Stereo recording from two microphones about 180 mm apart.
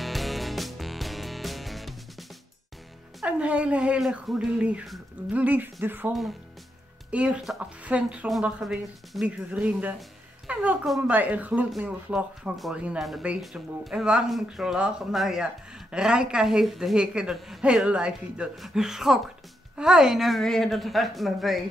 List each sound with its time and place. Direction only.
0.0 s music: centre (ahead or behind)
3.2 s speech: 5° right (ahead or behind)